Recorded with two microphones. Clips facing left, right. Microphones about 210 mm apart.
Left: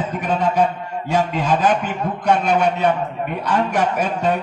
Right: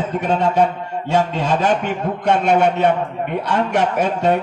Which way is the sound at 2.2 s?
25° right (ahead or behind).